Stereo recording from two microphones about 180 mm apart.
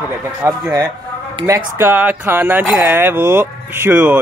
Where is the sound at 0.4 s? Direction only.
15° right (ahead or behind).